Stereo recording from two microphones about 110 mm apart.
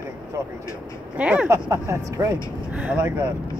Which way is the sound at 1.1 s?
10° right (ahead or behind).